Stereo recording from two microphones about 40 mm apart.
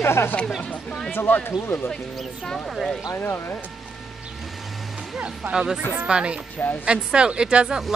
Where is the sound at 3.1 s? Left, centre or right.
Left.